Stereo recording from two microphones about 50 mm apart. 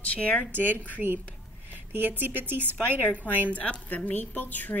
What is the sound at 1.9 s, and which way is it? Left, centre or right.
Speech, right.